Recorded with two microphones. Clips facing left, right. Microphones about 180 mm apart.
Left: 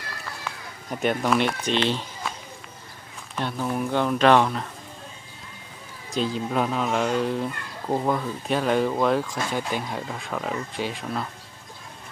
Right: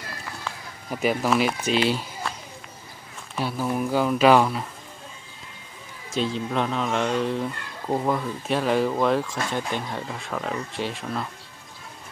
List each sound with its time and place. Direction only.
0.8 s speech: centre (ahead or behind)
3.3 s speech: 5° right (ahead or behind)
6.1 s speech: centre (ahead or behind)